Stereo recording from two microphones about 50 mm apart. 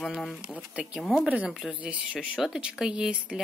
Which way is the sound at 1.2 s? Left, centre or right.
Right.